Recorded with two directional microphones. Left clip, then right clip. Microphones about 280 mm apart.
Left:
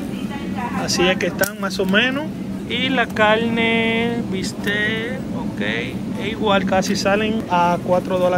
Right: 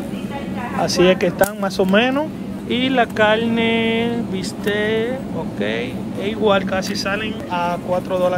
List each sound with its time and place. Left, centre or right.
0.8 s speech: centre
6.2 s speech: centre